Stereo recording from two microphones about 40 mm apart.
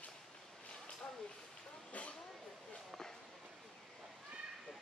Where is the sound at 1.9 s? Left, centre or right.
Left.